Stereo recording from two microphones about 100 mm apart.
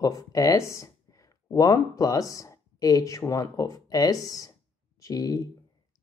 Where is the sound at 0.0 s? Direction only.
35° left (ahead or behind).